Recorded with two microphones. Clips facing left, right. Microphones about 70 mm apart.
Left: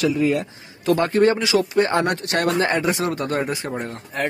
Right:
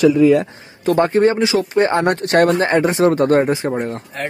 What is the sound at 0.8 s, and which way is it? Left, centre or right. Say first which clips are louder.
Speech: right 3 dB; right.